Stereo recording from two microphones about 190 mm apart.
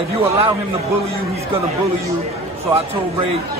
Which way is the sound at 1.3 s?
35° right (ahead or behind).